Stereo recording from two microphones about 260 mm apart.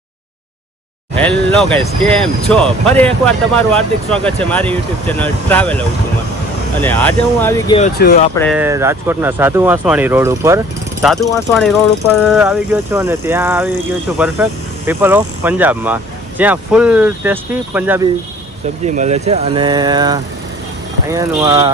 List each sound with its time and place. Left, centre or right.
1.1 s speech: centre
8.0 s speech: left
8.5 s speech: centre
11.1 s speech: centre
12.3 s speech: centre
18.9 s speech: right